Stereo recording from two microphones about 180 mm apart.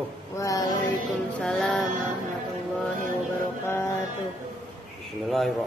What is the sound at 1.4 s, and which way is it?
Music, centre (ahead or behind).